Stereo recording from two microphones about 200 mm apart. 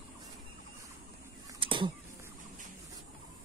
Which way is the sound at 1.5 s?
25° right (ahead or behind).